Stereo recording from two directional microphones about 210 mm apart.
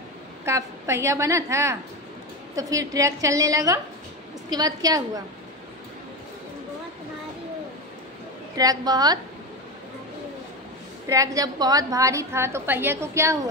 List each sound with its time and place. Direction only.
0.5 s a woman's voice: 15° right (ahead or behind)
8.5 s a woman's voice: 20° right (ahead or behind)
11.1 s a woman's voice: 15° right (ahead or behind)